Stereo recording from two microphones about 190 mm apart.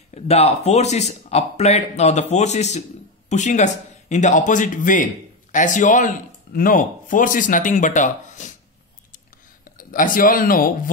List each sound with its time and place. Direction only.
0.1 s speech: 35° left (ahead or behind)
9.7 s speech: 45° left (ahead or behind)